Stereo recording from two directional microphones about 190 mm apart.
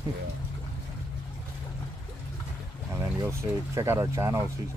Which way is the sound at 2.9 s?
15° right (ahead or behind).